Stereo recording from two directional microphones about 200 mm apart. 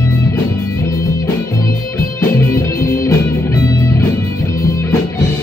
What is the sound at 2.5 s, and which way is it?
Music, 15° left (ahead or behind).